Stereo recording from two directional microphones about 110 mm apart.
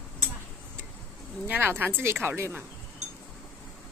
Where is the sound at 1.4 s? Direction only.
15° right (ahead or behind).